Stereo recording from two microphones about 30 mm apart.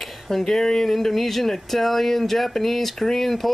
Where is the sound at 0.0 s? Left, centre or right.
Centre.